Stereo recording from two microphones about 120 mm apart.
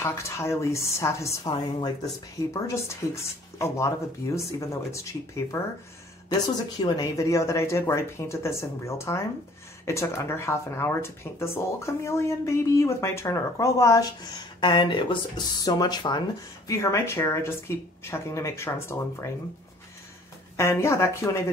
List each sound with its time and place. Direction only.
0.0 s speech: 20° left (ahead or behind)
1.4 s speech: 35° left (ahead or behind)
2.5 s speech: 25° left (ahead or behind)
6.8 s speech: 30° left (ahead or behind)
16.6 s speech: 25° left (ahead or behind)
20.5 s speech: 25° left (ahead or behind)